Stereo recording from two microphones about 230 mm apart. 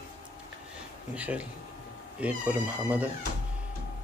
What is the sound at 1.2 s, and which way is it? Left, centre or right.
A man's voice, centre.